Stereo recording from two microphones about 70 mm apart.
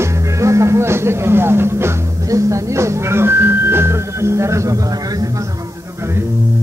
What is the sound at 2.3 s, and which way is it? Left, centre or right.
Speech, right.